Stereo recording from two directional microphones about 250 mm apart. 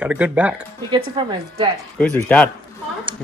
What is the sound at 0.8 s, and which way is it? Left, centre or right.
Speech, centre.